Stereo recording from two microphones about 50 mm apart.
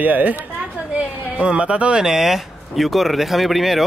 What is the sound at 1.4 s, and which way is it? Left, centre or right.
Speech, right.